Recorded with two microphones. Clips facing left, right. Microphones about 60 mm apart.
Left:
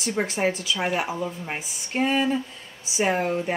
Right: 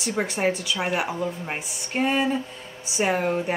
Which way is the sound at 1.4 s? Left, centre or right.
Centre.